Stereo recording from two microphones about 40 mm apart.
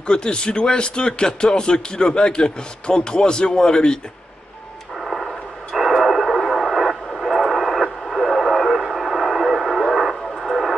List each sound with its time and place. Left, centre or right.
0.0 s speech: left
4.9 s a sound: centre
5.8 s radio: centre